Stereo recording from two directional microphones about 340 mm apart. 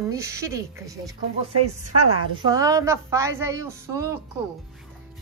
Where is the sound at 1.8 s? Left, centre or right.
Right.